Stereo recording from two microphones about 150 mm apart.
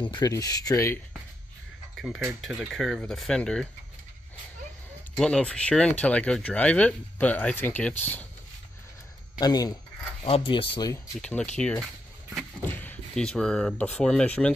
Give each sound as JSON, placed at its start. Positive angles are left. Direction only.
{"t": 0.0, "sound": "speech", "side_deg": 30}
{"t": 2.0, "sound": "speech", "side_deg": 0}
{"t": 5.1, "sound": "speech", "side_deg": 5}
{"t": 9.4, "sound": "speech", "side_deg": 25}
{"t": 10.2, "sound": "speech", "side_deg": 40}
{"t": 11.1, "sound": "speech", "side_deg": 5}
{"t": 12.6, "sound": "speech", "side_deg": 10}